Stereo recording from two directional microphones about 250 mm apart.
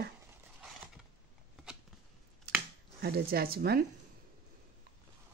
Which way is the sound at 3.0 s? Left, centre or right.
Right.